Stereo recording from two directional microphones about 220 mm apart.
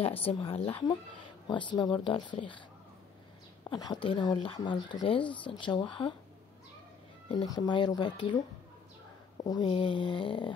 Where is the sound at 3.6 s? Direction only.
15° left (ahead or behind).